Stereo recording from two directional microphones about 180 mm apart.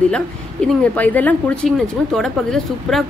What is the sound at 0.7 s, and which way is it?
A woman's voice, 10° left (ahead or behind).